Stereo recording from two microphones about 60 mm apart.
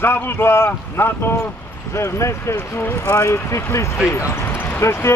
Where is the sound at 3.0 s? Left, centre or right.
Left.